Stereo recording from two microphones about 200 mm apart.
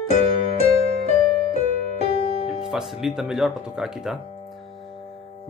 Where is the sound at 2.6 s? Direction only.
Centre (ahead or behind).